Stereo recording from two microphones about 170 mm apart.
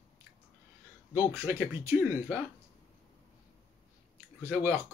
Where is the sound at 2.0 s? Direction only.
10° right (ahead or behind).